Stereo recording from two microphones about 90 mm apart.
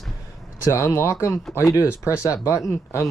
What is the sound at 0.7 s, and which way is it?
Speech, 30° left (ahead or behind).